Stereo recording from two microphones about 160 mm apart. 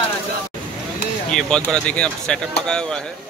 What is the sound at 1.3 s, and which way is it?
Speech, 5° left (ahead or behind).